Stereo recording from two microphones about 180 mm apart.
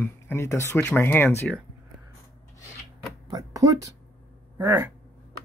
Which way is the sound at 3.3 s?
20° right (ahead or behind).